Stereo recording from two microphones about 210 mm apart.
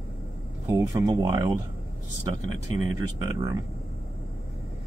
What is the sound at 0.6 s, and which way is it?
Speech, 15° right (ahead or behind).